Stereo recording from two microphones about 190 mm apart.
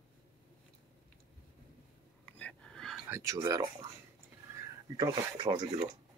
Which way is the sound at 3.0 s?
15° right (ahead or behind).